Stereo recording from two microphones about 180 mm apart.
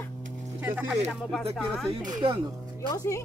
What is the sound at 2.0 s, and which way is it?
Speech, 25° right (ahead or behind).